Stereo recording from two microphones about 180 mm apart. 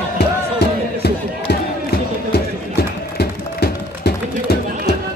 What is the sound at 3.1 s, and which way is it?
Music, 60° left (ahead or behind).